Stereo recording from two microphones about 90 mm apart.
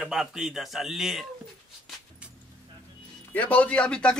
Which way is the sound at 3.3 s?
15° left (ahead or behind).